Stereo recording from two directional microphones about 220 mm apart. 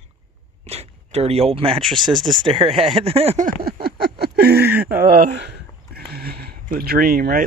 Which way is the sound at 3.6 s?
45° right (ahead or behind).